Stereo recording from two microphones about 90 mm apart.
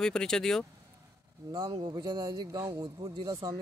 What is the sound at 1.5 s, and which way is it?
Speech, 70° right (ahead or behind).